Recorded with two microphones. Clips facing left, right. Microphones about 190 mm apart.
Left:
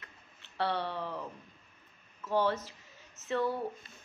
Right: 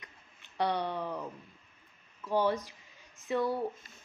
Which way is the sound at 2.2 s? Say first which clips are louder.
Right 1 dB; 15° right (ahead or behind).